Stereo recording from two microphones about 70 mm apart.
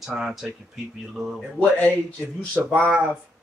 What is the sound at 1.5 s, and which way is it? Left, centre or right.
Speech, centre.